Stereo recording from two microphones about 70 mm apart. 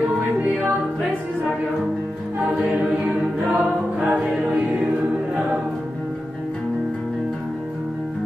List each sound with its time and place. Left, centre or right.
3.5 s choir: centre